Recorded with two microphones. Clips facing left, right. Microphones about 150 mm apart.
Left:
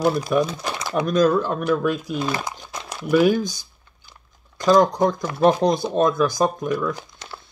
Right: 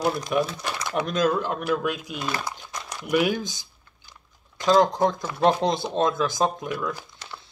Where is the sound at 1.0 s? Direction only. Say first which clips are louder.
Left 6 dB; 20° right (ahead or behind).